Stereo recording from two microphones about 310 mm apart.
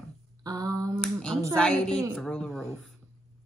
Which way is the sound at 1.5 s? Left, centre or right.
Centre.